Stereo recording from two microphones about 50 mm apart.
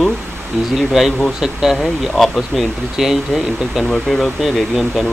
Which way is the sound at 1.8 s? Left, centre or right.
Centre.